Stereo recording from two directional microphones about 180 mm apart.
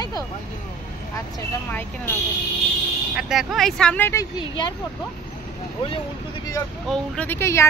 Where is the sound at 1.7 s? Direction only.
10° left (ahead or behind).